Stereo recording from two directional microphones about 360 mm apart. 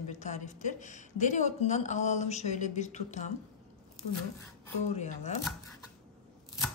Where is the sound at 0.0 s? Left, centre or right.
Centre.